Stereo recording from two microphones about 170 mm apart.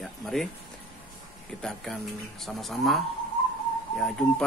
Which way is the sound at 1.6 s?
Centre (ahead or behind).